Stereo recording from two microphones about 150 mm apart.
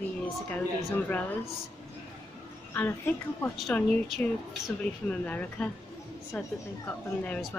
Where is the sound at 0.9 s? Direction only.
10° left (ahead or behind).